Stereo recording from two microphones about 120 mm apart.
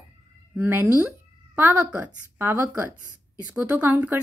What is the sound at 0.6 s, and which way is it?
Speech, 15° right (ahead or behind).